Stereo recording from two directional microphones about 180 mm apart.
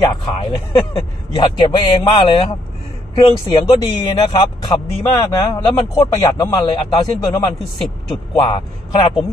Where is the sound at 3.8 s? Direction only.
25° left (ahead or behind).